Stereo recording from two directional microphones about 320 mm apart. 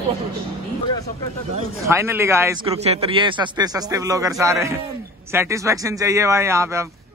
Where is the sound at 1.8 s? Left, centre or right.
Centre.